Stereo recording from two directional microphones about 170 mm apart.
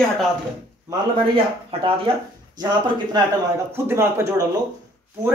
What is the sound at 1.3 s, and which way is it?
Speech, 35° right (ahead or behind).